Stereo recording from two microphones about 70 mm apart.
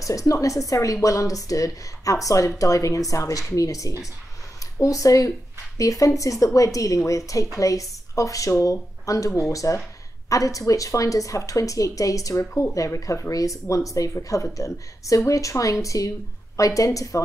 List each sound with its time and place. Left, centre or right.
0.0 s speech: left